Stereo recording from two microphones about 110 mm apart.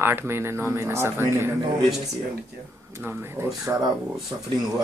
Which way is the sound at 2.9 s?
20° right (ahead or behind).